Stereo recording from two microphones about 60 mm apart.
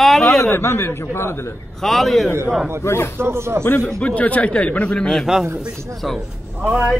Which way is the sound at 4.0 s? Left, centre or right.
Left.